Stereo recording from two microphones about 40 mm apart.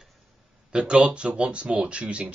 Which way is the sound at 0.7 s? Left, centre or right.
Right.